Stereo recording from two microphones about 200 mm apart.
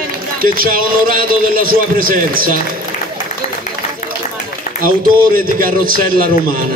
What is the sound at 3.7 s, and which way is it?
Run, 40° left (ahead or behind).